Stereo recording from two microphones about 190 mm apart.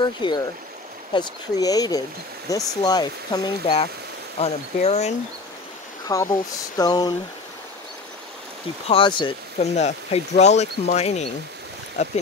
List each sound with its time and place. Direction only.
0.0 s speech: 25° left (ahead or behind)
4.4 s speech: 35° left (ahead or behind)
6.0 s speech: 15° left (ahead or behind)
8.8 s speech: 25° left (ahead or behind)
9.8 s speech: 35° left (ahead or behind)